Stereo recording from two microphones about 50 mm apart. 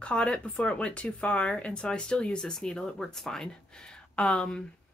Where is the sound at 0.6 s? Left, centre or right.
Left.